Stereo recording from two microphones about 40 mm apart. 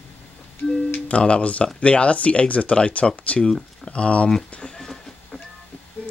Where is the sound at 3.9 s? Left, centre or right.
Left.